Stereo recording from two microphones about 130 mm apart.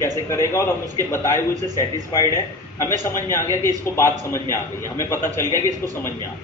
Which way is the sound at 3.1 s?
20° left (ahead or behind).